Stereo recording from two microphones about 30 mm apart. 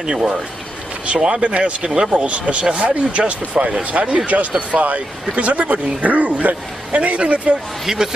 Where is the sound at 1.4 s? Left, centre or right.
Right.